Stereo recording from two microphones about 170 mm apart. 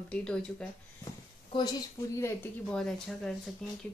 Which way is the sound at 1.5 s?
25° left (ahead or behind).